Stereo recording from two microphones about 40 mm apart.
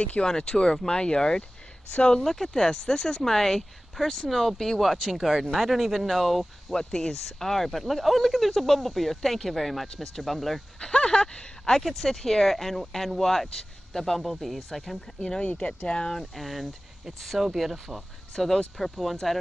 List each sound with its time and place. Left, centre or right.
0.0 s speech: left; by 6.4 s centre
6.7 s speech: centre
10.8 s speech: left
11.8 s speech: centre
15.1 s speech: left
16.1 s speech: centre
18.3 s speech: centre
18.8 s speech: centre